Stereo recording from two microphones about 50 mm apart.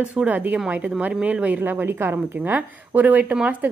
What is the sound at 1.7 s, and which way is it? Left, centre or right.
A woman's voice, right.